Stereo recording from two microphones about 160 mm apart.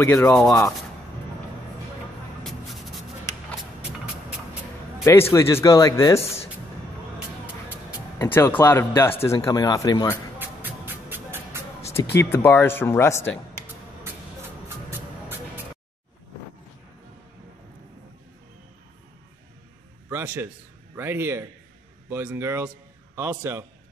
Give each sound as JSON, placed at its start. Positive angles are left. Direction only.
{"t": 0.0, "sound": "speech", "side_deg": 10}
{"t": 2.4, "sound": "a sound", "side_deg": 0}
{"t": 3.8, "sound": "music", "side_deg": -5}
{"t": 5.3, "sound": "speech", "side_deg": 15}
{"t": 6.2, "sound": "speech", "side_deg": 40}
{"t": 8.2, "sound": "speech", "side_deg": 15}
{"t": 10.4, "sound": "music", "side_deg": -10}
{"t": 12.2, "sound": "speech", "side_deg": 15}
{"t": 14.9, "sound": "music", "side_deg": -15}
{"t": 20.1, "sound": "a sound", "side_deg": -15}
{"t": 20.9, "sound": "speech", "side_deg": -15}